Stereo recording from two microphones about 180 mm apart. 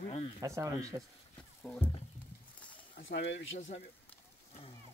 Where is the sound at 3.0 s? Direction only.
80° left.